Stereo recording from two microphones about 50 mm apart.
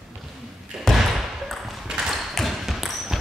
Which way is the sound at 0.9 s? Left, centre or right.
Centre.